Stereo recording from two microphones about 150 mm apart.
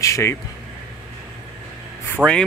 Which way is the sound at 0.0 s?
20° left (ahead or behind).